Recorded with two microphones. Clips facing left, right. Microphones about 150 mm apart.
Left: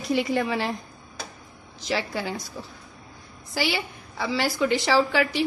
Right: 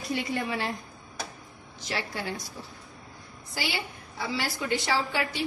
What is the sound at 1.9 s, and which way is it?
Speech, 90° left.